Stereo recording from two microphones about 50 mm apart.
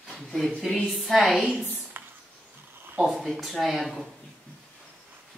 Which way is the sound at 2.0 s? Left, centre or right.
Right.